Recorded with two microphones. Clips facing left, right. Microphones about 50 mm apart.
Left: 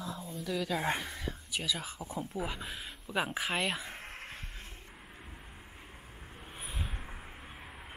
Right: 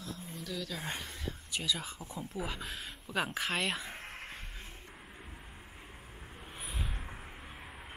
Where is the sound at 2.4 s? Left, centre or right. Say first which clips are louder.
Left 1 dB; centre.